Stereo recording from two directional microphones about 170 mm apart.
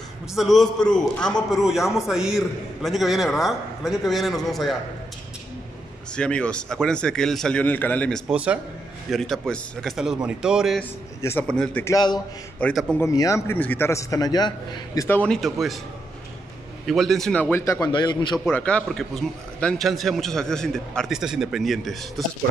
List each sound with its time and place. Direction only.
0.3 s a man's voice: centre (ahead or behind)
6.1 s a man's voice: 5° left (ahead or behind)
8.3 s a man's voice: 5° right (ahead or behind)
10.8 s a man's voice: 15° left (ahead or behind)
11.8 s a man's voice: 20° left (ahead or behind)
12.5 s a man's voice: 5° left (ahead or behind)
13.0 s a man's voice: 20° left (ahead or behind)
15.0 s a man's voice: 10° left (ahead or behind)
16.8 s a man's voice: centre (ahead or behind); by 18.4 s 25° left (ahead or behind)
18.5 s a man's voice: 5° left (ahead or behind)